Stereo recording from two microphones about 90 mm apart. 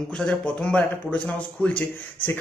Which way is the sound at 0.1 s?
10° left (ahead or behind).